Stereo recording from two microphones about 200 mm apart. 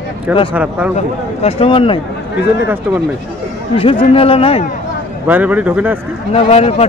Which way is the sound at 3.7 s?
25° left (ahead or behind).